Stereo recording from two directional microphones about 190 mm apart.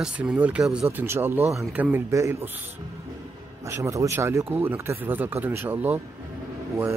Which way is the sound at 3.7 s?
15° right (ahead or behind).